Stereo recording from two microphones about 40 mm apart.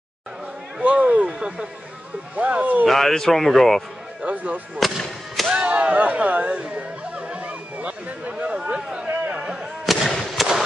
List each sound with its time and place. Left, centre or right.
0.7 s speech: right
2.3 s speech: right
2.9 s speech: centre
4.2 s speech: right
4.7 s artillery fire: centre
5.5 s whip: right
7.2 s a sound: right
8.3 s speech: right
8.6 s a sound: right
9.4 s artillery fire: centre
9.8 s fireworks: centre